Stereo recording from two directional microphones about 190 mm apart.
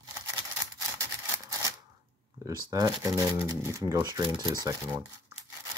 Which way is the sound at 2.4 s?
20° right (ahead or behind).